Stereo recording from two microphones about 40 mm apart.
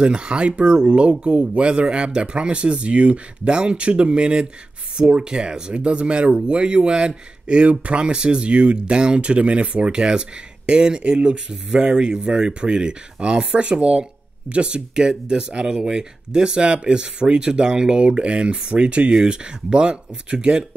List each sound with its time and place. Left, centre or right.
0.0 s speech: right